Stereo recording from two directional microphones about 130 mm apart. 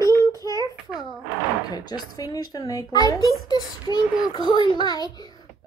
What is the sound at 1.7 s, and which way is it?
A child's voice, 30° left (ahead or behind).